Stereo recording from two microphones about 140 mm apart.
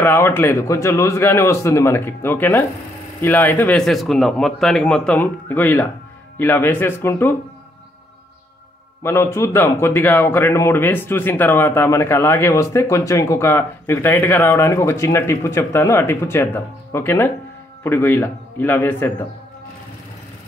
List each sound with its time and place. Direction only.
0.0 s a man's voice: 15° left (ahead or behind)
9.0 s a man's voice: 20° left (ahead or behind)